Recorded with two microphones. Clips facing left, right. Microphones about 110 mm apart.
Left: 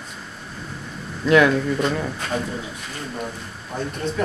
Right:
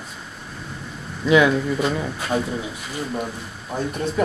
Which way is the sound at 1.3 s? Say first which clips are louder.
Even; 5° right (ahead or behind).